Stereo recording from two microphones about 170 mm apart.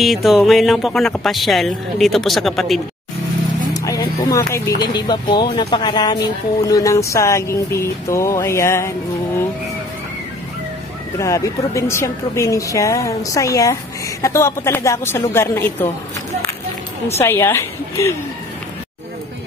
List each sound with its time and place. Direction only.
0.0 s speech: centre (ahead or behind)
3.7 s a woman's voice: 20° left (ahead or behind)
11.1 s a woman's voice: 20° left (ahead or behind)
17.2 s a woman's voice: 15° left (ahead or behind)